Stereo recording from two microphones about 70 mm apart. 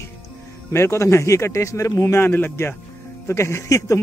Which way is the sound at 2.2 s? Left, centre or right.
Left.